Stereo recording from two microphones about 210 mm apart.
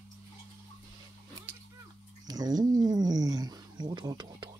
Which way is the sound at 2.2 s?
20° right (ahead or behind).